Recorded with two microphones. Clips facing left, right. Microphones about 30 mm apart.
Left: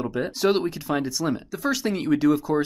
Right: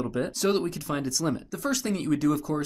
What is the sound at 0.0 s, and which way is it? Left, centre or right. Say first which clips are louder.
Speech: left 3 dB; centre.